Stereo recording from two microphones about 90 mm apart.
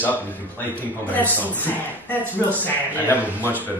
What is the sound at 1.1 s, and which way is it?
A man's voice, 20° left (ahead or behind).